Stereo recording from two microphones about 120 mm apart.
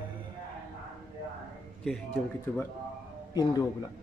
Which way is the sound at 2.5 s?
20° left (ahead or behind).